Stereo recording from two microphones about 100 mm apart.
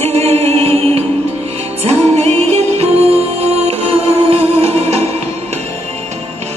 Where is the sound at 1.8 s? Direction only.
90° right.